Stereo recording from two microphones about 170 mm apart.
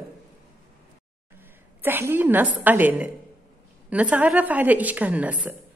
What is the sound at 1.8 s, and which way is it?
A woman's voice, 10° right (ahead or behind).